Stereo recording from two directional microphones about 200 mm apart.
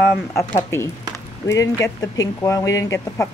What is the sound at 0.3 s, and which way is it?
Speech, 15° left (ahead or behind).